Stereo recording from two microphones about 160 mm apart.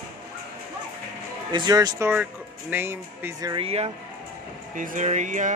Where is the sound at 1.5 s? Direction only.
25° right (ahead or behind).